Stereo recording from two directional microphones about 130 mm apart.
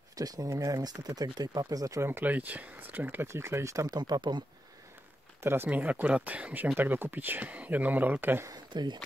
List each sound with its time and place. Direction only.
0.1 s speech: 30° right (ahead or behind)
5.4 s speech: 15° right (ahead or behind)
8.7 s speech: 35° right (ahead or behind)